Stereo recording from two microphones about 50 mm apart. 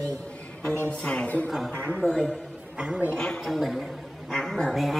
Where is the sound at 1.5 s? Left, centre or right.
Centre.